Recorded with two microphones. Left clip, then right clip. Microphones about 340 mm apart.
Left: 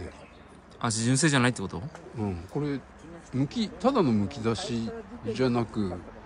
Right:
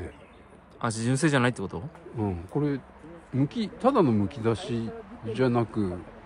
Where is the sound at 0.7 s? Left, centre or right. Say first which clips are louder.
Left 1 dB; centre.